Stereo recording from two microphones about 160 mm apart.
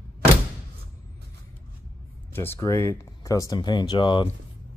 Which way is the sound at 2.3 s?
15° left (ahead or behind).